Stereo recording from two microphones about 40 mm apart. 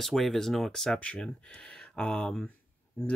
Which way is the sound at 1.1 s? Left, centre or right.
Centre.